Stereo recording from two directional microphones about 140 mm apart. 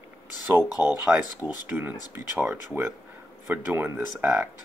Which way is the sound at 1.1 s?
10° right (ahead or behind).